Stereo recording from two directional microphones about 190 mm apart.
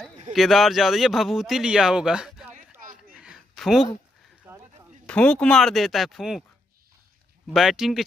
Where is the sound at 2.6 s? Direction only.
45° right (ahead or behind).